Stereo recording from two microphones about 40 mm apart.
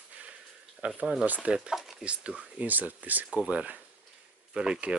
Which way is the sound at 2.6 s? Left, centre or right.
Right.